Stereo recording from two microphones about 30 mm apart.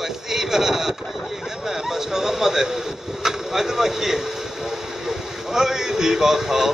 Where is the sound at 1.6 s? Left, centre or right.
Centre.